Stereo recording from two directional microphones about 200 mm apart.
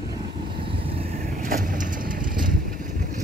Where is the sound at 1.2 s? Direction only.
45° right (ahead or behind).